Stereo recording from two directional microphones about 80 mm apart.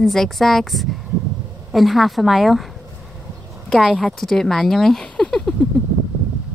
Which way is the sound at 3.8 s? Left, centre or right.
Centre.